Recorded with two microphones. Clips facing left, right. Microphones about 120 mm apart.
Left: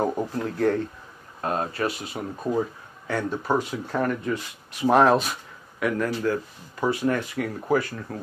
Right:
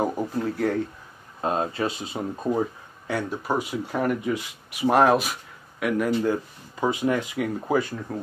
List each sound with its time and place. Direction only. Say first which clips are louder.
0.0 s speech: even; 5° right (ahead or behind)
1.4 s speech: right 1 dB; 25° right (ahead or behind)
3.1 s speech: left 2 dB; 10° right (ahead or behind)
6.2 s speech: right 1 dB; 20° right (ahead or behind)